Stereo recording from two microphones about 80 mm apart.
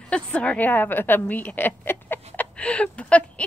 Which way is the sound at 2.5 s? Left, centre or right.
Centre.